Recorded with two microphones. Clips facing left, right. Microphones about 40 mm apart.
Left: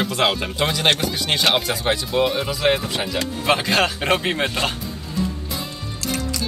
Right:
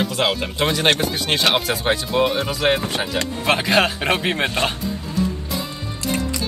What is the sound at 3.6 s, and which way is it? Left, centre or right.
Speech, centre.